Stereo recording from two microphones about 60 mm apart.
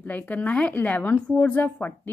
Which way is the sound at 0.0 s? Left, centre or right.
Left.